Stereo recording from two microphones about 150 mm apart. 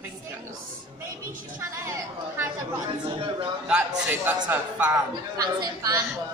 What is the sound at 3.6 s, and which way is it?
Speech, 10° right (ahead or behind).